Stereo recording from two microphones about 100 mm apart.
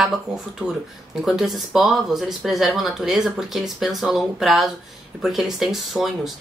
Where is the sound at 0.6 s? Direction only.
15° right (ahead or behind).